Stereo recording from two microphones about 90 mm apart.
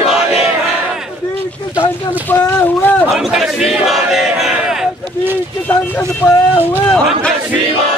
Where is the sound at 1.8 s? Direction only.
20° left (ahead or behind).